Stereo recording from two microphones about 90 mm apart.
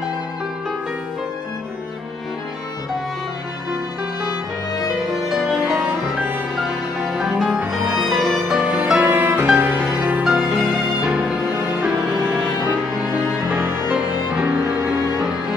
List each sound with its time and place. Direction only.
5.1 s music: centre (ahead or behind)
7.1 s music: 5° right (ahead or behind)
7.9 s music: centre (ahead or behind)
8.5 s music: 10° right (ahead or behind)
9.8 s music: 5° right (ahead or behind); by 14.9 s 30° right (ahead or behind)